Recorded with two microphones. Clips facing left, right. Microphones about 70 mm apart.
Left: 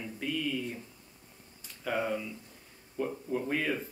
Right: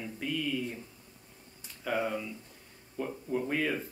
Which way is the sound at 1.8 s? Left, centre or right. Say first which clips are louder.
Even; centre.